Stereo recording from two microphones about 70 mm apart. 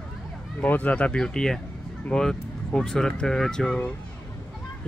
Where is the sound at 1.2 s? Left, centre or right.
Centre.